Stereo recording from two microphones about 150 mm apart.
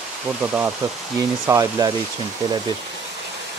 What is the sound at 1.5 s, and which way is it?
Speech, 20° right (ahead or behind).